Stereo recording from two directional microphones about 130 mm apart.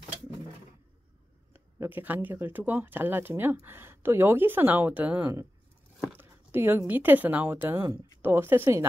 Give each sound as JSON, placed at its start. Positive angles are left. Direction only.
{"t": 1.5, "sound": "speech", "side_deg": -15}